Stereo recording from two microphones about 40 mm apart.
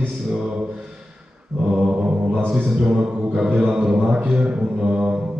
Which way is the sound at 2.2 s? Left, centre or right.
Right.